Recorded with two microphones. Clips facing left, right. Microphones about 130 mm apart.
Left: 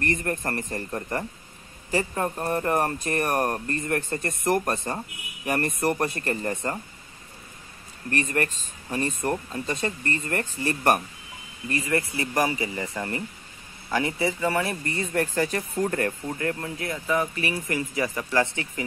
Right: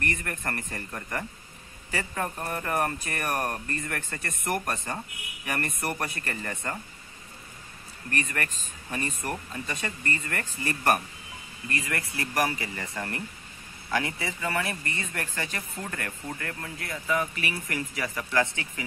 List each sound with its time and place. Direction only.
0.0 s speech: 35° left (ahead or behind)
8.1 s speech: 30° left (ahead or behind)